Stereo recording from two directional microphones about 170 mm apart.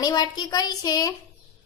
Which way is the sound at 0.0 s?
25° left (ahead or behind).